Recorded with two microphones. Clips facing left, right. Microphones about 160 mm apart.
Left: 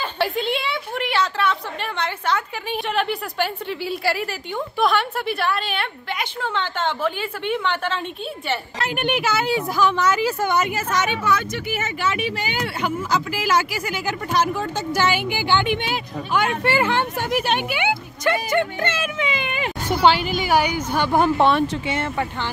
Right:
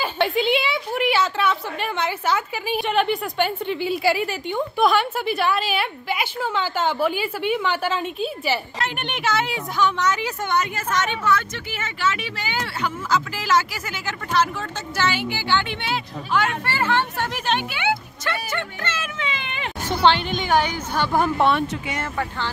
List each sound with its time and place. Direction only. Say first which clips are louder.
0.0 s a woman's voice: right 2 dB; centre (ahead or behind)
8.9 s a woman's voice: left 3 dB; 5° left (ahead or behind)
21.2 s speech: left 3 dB; 30° left (ahead or behind)